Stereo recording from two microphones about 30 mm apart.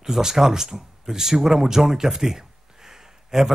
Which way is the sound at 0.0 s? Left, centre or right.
Centre.